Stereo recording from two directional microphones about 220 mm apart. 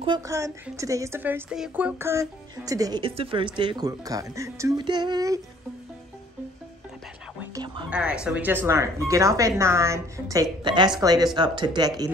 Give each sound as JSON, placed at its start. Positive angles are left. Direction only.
{"t": 0.0, "sound": "a woman's voice", "side_deg": -15}
{"t": 7.5, "sound": "speech", "side_deg": -20}
{"t": 7.9, "sound": "a woman's voice", "side_deg": -5}